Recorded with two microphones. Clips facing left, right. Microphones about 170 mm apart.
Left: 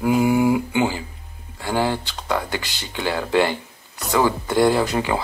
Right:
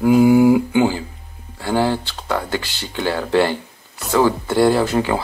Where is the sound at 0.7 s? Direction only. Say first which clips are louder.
Right 4 dB; 15° left (ahead or behind).